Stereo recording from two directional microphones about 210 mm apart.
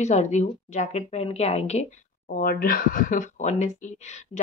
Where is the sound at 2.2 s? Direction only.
45° left (ahead or behind).